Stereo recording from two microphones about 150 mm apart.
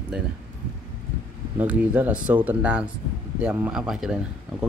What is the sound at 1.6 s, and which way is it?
Speech, 10° right (ahead or behind).